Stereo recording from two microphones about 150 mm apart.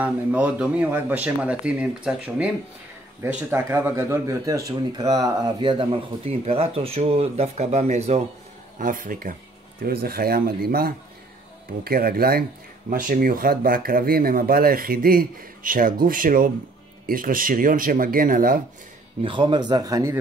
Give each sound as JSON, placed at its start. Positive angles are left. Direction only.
{"t": 0.0, "sound": "speech", "side_deg": -10}
{"t": 8.7, "sound": "speech", "side_deg": -65}
{"t": 9.8, "sound": "speech", "side_deg": -90}
{"t": 12.9, "sound": "speech", "side_deg": -75}
{"t": 19.2, "sound": "a man's voice", "side_deg": -30}